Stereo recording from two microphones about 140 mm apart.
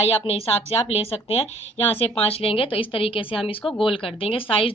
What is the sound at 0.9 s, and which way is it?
A woman's voice, 45° left (ahead or behind).